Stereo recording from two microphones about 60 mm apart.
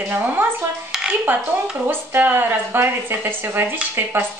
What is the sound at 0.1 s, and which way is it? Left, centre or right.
A woman's voice, right.